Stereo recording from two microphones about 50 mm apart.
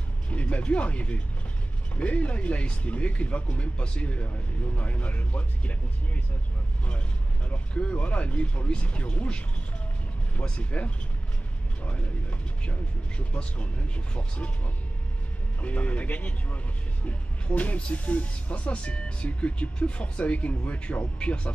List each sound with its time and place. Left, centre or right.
0.3 s speech: left
7.4 s speech: left
10.4 s speech: left
15.6 s speech: left